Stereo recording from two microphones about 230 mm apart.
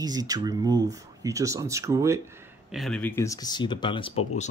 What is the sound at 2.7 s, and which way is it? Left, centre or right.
Speech, centre.